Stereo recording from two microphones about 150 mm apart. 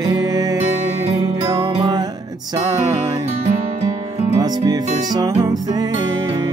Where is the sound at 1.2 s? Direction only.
25° right (ahead or behind).